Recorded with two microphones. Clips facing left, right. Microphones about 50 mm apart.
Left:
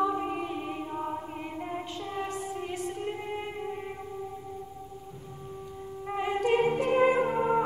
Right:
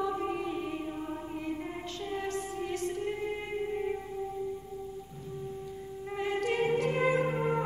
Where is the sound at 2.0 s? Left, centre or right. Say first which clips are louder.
Right 2 dB; centre.